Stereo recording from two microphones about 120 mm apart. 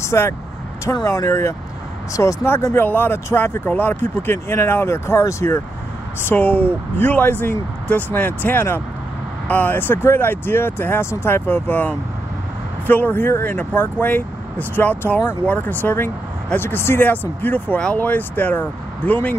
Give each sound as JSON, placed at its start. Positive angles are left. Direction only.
{"t": 0.0, "sound": "vehicle", "side_deg": 25}
{"t": 1.0, "sound": "speech", "side_deg": 25}